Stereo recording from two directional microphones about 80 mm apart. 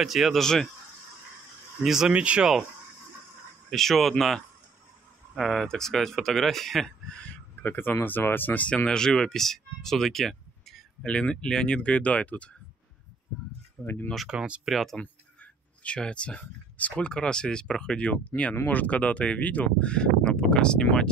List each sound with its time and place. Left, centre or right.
0.0 s speech: centre
1.8 s speech: centre
3.7 s speech: centre
5.3 s speech: centre
7.6 s speech: left; by 11.1 s centre
11.1 s speech: centre
13.8 s speech: left
14.1 s speech: centre
14.7 s speech: centre
15.8 s speech: centre